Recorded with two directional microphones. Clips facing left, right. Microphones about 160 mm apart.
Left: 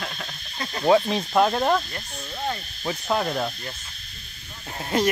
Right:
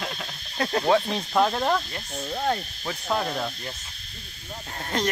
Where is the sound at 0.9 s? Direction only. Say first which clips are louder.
Left 6 dB; 5° left (ahead or behind).